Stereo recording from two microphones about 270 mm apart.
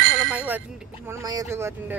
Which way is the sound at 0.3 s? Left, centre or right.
Centre.